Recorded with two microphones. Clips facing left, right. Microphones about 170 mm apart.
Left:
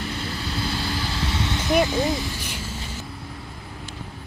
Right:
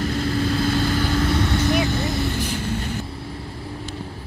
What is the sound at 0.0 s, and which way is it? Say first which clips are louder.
Vehicle: right 8 dB; 45° right (ahead or behind).